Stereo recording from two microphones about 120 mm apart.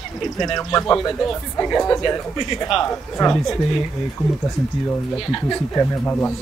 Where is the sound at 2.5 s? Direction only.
50° left (ahead or behind).